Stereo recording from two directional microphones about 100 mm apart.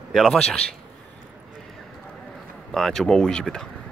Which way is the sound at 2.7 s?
5° left (ahead or behind).